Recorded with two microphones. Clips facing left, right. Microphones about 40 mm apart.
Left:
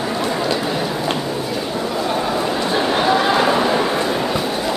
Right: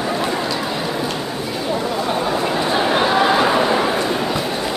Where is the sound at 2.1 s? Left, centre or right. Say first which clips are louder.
Right 1 dB; centre.